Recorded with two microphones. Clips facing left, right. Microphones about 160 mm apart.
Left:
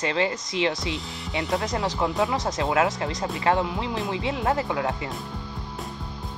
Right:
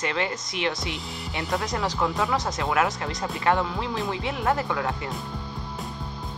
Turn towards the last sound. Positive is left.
turn(degrees=20)  # may be behind; listen again after turning